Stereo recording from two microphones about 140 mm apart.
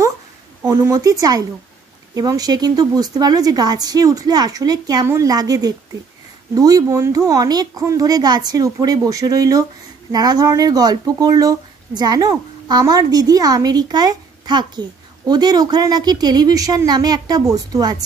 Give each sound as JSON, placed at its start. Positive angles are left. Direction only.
{"t": 0.6, "sound": "speech", "side_deg": -20}